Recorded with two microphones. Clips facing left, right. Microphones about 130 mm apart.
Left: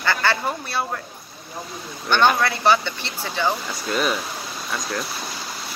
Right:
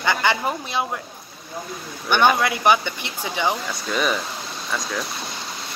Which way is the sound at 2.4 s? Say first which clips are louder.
Even; 15° right (ahead or behind).